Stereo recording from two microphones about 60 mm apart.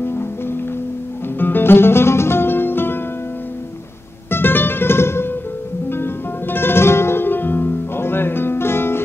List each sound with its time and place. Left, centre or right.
0.0 s music: left
4.3 s music: left